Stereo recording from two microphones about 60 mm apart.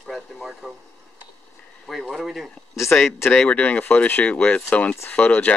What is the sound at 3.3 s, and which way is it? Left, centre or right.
Speech, left.